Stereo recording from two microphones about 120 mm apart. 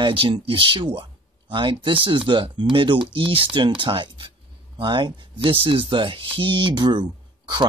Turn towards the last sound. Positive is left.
turn(degrees=-40)  # may be behind; listen again after turning